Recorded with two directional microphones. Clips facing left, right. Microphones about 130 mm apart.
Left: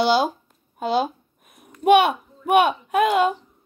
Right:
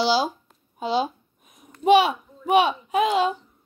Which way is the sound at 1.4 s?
55° left (ahead or behind).